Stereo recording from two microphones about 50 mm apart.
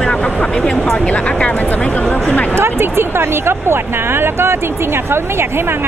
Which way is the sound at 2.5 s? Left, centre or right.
Right.